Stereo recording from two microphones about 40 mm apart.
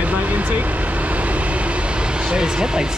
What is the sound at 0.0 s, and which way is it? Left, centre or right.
Vehicle, right.